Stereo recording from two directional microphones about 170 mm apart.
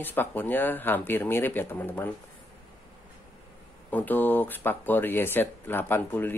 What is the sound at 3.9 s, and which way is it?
Speech, 10° left (ahead or behind).